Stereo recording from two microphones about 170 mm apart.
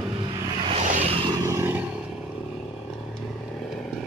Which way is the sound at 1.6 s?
15° right (ahead or behind).